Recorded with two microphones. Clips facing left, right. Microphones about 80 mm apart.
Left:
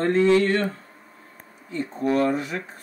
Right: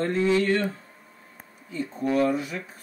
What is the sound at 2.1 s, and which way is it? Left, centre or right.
Speech, left.